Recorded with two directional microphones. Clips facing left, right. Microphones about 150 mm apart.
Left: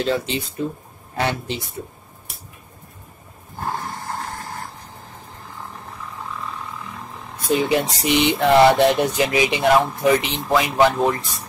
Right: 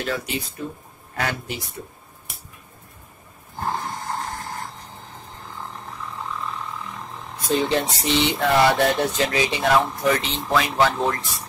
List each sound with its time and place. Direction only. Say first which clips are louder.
0.0 s speech: left 5 dB; 25° left (ahead or behind)
7.4 s speech: left 2 dB; 10° left (ahead or behind)